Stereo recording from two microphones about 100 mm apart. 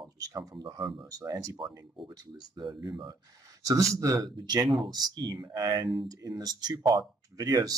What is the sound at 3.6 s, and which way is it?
Speech, 35° right (ahead or behind).